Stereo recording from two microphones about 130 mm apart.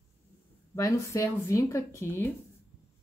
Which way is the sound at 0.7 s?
25° left (ahead or behind).